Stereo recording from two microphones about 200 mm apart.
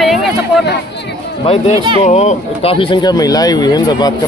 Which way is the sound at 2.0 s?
35° left (ahead or behind).